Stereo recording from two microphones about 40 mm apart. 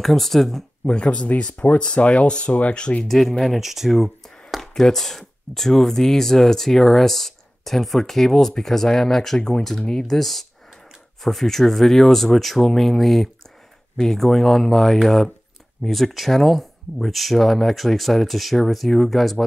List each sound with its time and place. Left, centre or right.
0.0 s speech: centre
0.8 s speech: left
3.1 s speech: centre
4.7 s speech: centre
10.1 s speech: centre